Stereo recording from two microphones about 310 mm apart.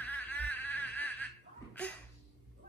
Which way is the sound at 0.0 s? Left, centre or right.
Centre.